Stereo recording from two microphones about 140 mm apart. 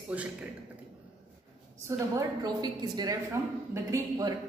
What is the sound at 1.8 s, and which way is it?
A woman's voice, 25° right (ahead or behind).